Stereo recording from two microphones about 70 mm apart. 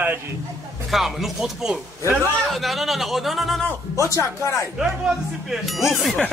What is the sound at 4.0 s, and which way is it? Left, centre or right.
Speech, left.